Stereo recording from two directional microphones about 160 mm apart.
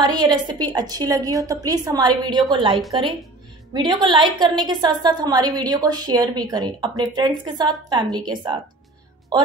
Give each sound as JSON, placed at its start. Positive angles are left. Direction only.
{"t": 0.0, "sound": "a woman's voice", "side_deg": -25}